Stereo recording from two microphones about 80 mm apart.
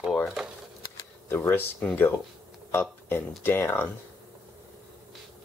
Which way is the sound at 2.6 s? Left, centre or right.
Left.